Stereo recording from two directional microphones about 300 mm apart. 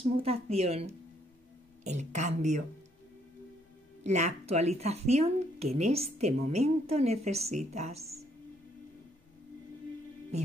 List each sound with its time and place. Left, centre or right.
0.0 s a woman's voice: centre
4.0 s a woman's voice: right